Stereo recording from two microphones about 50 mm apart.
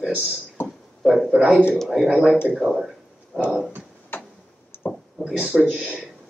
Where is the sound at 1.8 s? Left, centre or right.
Centre.